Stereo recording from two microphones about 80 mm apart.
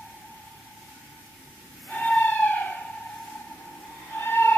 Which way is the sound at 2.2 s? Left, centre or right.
Centre.